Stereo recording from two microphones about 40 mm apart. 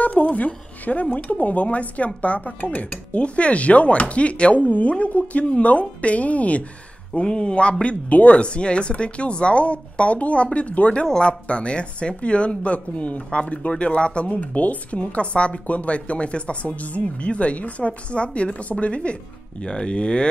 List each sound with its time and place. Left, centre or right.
0.0 s a woman's voice: left
7.2 s a woman's voice: left
15.0 s a woman's voice: left